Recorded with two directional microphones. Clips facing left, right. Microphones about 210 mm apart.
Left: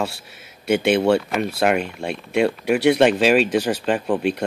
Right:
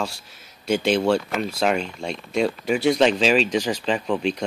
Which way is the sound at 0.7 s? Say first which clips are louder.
Left 3 dB; 60° left (ahead or behind).